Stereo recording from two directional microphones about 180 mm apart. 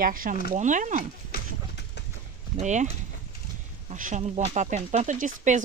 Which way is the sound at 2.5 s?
40° right (ahead or behind).